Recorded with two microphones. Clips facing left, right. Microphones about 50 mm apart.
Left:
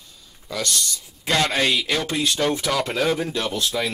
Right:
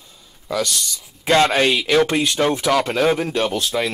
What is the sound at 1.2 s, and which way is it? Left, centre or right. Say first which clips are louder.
Speech: right 5 dB; right.